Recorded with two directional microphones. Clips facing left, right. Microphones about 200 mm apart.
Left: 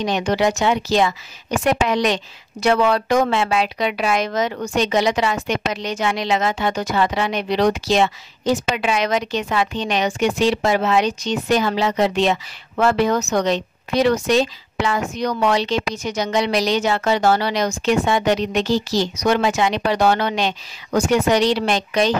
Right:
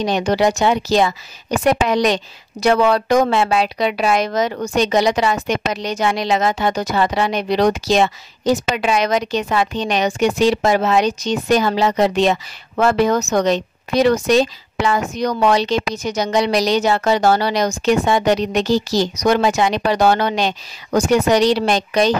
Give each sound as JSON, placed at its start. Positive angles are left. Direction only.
{"t": 0.0, "sound": "speech", "side_deg": -35}